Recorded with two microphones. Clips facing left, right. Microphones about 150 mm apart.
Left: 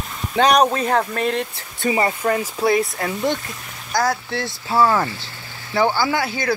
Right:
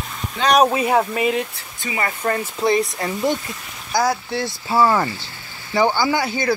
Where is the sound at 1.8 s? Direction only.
45° left (ahead or behind).